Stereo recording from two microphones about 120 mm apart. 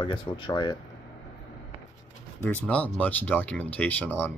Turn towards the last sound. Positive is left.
turn(degrees=15)  # may be behind; listen again after turning